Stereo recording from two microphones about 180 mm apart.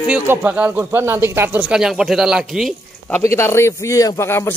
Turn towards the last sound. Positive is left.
turn(degrees=15)  # may be behind; listen again after turning